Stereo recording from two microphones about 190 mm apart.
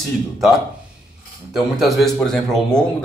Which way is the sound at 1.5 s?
Centre (ahead or behind).